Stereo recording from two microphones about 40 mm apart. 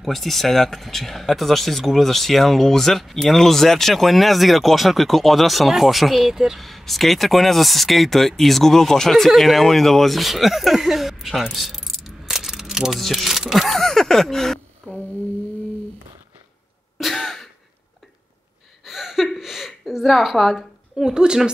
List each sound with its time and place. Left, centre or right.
0.0 s speech: centre
6.6 s speech: centre
13.7 s speech: centre
14.8 s a sound: centre
17.1 s a sound: centre
18.9 s a woman's voice: centre
21.0 s speech: centre